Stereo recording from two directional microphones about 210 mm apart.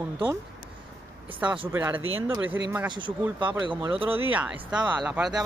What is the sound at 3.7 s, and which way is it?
Speech, 25° right (ahead or behind).